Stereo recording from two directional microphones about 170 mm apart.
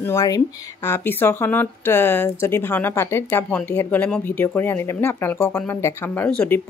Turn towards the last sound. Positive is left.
turn(degrees=10)  # may be behind; listen again after turning